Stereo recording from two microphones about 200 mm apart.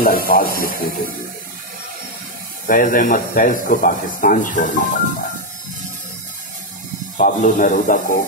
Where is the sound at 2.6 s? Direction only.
40° left (ahead or behind).